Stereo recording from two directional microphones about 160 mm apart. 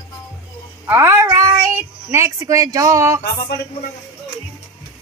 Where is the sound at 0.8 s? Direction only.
15° right (ahead or behind).